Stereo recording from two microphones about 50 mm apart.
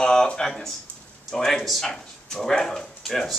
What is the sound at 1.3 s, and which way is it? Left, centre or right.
Speech, centre.